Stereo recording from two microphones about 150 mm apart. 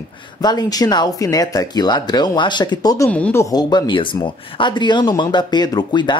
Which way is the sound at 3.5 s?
30° left (ahead or behind).